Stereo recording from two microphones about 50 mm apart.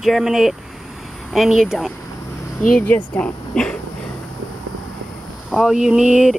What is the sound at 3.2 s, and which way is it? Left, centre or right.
Speech, centre.